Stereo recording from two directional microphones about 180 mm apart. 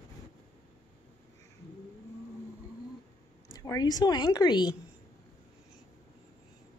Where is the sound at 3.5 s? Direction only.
20° left (ahead or behind).